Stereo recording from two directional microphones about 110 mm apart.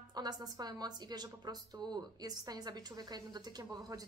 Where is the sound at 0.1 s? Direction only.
40° right (ahead or behind).